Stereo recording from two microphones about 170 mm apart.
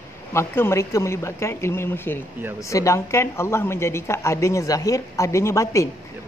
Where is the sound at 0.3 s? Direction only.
15° left (ahead or behind).